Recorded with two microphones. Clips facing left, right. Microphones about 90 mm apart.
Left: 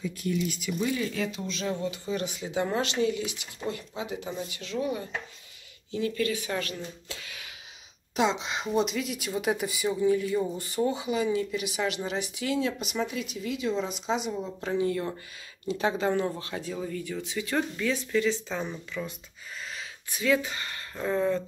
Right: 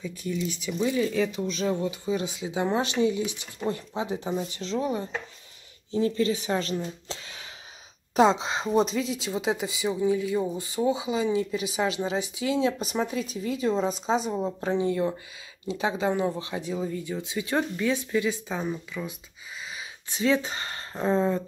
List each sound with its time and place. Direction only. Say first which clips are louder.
0.0 s speech: left 1 dB; 10° left (ahead or behind)
0.7 s speech: right 7 dB; 20° right (ahead or behind)
2.6 s speech: right 3 dB; 25° right (ahead or behind)
11.1 s speech: right 2 dB; 25° right (ahead or behind)
14.6 s speech: right 2 dB; 25° right (ahead or behind); by 19.1 s 5° right (ahead or behind)
20.1 s speech: right 2 dB; 25° right (ahead or behind)